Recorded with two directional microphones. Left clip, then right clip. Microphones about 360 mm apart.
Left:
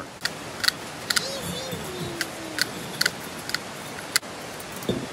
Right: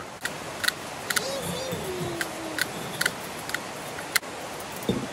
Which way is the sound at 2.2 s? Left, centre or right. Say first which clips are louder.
Left 4 dB; centre.